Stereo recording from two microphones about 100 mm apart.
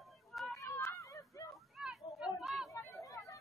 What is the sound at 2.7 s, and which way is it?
Chatter, 30° left (ahead or behind).